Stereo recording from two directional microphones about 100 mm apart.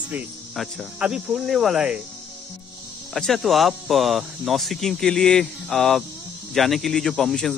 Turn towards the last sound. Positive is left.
turn(degrees=5)  # may be behind; listen again after turning